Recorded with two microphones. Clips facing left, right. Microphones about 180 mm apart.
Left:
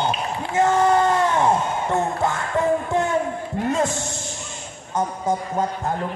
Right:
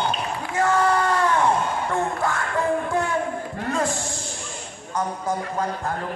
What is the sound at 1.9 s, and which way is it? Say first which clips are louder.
Speech: left 4 dB; 25° left (ahead or behind).